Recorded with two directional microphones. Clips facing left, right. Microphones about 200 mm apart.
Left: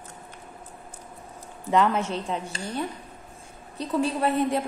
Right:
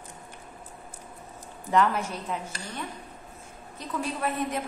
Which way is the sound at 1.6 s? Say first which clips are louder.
Left 2 dB; 20° left (ahead or behind).